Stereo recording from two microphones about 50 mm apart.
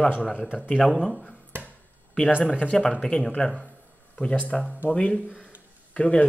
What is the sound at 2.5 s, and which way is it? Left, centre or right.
Speech, centre.